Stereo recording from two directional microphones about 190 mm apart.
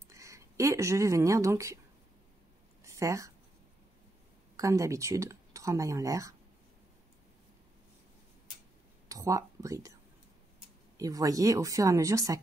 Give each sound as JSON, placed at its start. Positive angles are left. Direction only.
{"t": 0.1, "sound": "speech", "side_deg": -15}
{"t": 2.8, "sound": "a sound", "side_deg": -15}
{"t": 4.6, "sound": "speech", "side_deg": -15}
{"t": 9.1, "sound": "speech", "side_deg": -15}
{"t": 11.0, "sound": "speech", "side_deg": -20}